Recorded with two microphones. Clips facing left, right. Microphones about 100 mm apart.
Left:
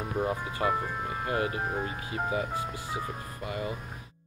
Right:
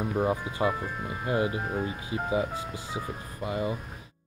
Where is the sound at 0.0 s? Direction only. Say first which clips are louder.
Right 3 dB; 20° right (ahead or behind).